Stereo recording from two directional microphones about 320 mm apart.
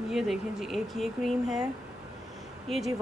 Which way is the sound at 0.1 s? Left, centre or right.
Centre.